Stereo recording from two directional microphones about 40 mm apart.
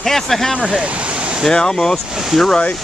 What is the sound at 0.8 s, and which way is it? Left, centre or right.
Stream, right.